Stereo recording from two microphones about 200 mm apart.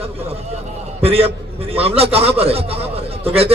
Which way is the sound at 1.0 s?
30° right (ahead or behind).